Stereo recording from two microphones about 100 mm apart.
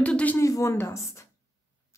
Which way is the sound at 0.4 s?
30° left (ahead or behind).